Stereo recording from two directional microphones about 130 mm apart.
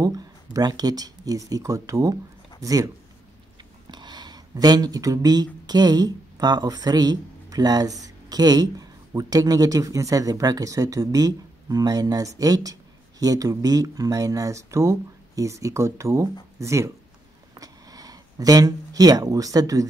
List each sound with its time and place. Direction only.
0.0 s speech: 30° right (ahead or behind)
3.9 s speech: 35° right (ahead or behind)
17.6 s a sound: 30° right (ahead or behind)